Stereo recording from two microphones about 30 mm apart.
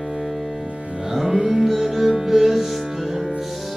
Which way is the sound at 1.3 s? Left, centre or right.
Right.